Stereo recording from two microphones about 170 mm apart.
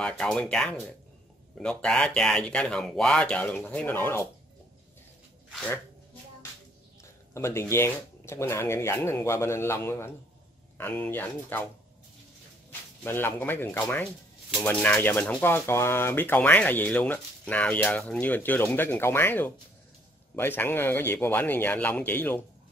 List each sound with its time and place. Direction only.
0.0 s speech: 5° left (ahead or behind)
5.5 s speech: 5° left (ahead or behind)
7.3 s speech: 15° left (ahead or behind)
13.0 s speech: 10° left (ahead or behind)